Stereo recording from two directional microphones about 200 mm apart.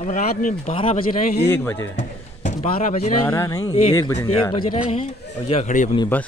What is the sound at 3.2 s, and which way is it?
Speech, 15° left (ahead or behind).